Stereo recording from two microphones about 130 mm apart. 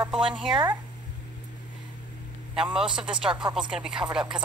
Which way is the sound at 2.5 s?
5° right (ahead or behind).